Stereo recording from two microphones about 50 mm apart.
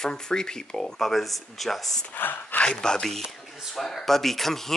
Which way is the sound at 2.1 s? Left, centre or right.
Left.